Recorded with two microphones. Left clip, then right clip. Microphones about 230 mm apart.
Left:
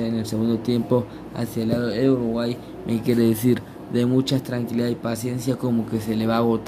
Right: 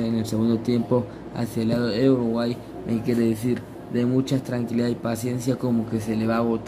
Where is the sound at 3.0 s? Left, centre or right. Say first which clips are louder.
Left 4 dB; centre.